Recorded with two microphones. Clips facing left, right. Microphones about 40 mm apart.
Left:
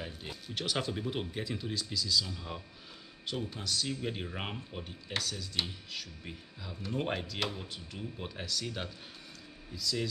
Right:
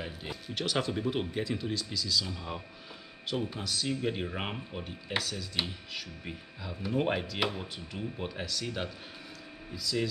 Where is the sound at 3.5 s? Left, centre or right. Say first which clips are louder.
Right 2 dB; centre.